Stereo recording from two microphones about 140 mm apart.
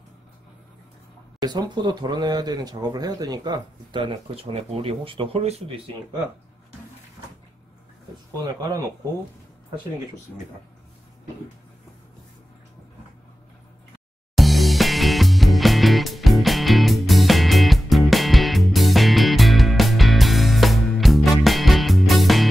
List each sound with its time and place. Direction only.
1.4 s speech: 30° right (ahead or behind)
14.3 s music: centre (ahead or behind)